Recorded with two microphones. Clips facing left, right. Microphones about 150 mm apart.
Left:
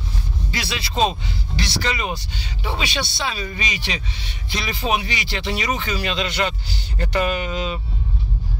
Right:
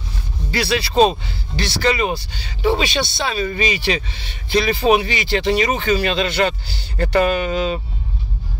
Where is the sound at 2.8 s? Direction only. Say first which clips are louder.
Right 4 dB; 25° right (ahead or behind).